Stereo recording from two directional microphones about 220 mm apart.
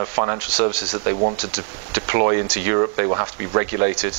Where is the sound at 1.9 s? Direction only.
15° right (ahead or behind).